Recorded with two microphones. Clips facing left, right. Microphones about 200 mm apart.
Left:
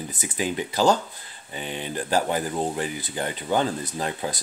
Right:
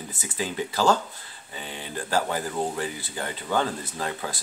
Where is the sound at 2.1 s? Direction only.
20° left (ahead or behind).